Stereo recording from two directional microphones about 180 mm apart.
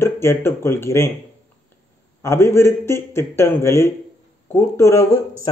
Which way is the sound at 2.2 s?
15° left (ahead or behind).